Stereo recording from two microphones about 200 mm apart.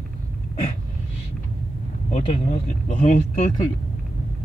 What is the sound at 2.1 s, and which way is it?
Speech, 30° left (ahead or behind).